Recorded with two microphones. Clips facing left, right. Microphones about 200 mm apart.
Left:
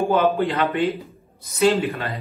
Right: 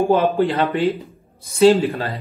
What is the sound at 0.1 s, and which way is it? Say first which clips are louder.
Speech: right 3 dB; 30° right (ahead or behind).